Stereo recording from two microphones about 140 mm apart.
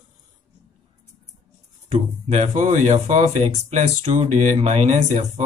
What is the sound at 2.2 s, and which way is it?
Speech, 55° right (ahead or behind).